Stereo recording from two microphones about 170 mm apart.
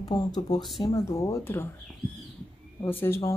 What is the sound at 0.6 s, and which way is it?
Speech, centre (ahead or behind).